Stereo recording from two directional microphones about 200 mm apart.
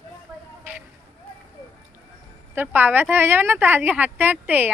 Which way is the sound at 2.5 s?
10° right (ahead or behind).